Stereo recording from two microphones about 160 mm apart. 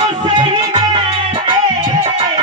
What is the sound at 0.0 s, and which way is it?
Music, 30° right (ahead or behind).